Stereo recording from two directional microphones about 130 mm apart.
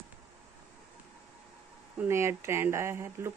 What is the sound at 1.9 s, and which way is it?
A woman's voice, 20° right (ahead or behind).